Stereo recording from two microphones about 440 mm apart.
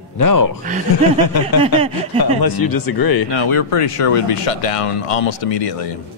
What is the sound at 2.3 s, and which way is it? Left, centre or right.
Speech, left.